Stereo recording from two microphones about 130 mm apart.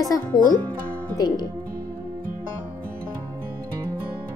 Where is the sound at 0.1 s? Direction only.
30° left (ahead or behind).